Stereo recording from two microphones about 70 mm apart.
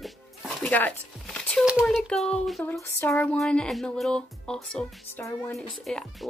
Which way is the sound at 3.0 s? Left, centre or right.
Left.